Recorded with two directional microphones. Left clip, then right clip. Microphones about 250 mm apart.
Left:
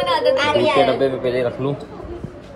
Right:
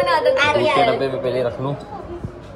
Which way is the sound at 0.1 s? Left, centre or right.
Left.